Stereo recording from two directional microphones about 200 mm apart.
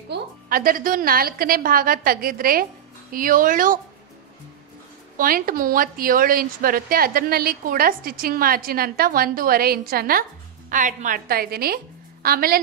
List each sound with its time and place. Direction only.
0.1 s a woman's voice: 45° right (ahead or behind)
5.1 s a woman's voice: 45° right (ahead or behind)